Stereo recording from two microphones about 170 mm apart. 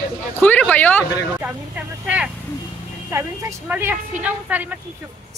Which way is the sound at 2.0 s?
5° right (ahead or behind).